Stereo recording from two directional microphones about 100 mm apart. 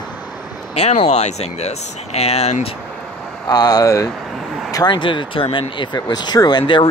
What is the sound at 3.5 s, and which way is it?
Speech, 40° left (ahead or behind).